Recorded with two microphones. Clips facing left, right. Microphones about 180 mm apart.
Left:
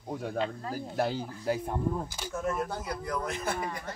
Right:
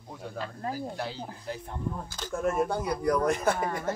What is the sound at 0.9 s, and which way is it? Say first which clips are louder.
Speech: left 6 dB; 50° left (ahead or behind).